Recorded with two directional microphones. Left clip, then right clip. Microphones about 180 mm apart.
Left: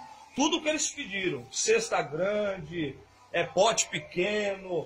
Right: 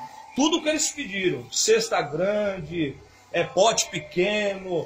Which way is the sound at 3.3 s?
10° left (ahead or behind).